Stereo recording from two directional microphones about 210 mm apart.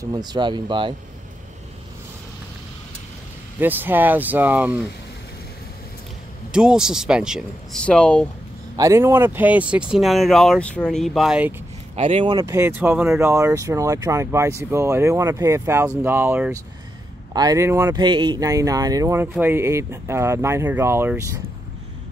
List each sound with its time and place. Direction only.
0.0 s speech: 20° right (ahead or behind)
3.5 s speech: 10° right (ahead or behind)
6.5 s speech: 5° right (ahead or behind)
8.7 s speech: 15° right (ahead or behind)
11.9 s speech: 30° right (ahead or behind); by 21.2 s 10° right (ahead or behind)